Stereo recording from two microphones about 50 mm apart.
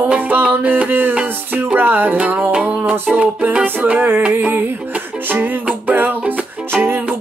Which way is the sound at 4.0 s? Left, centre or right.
Right.